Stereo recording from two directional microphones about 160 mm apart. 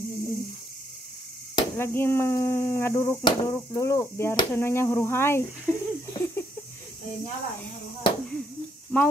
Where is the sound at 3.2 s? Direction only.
20° left (ahead or behind).